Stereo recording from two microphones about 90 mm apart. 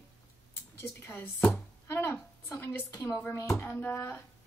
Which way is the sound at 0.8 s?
25° left (ahead or behind).